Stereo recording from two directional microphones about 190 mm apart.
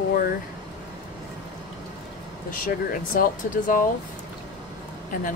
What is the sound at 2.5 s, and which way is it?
Speech, 45° left (ahead or behind).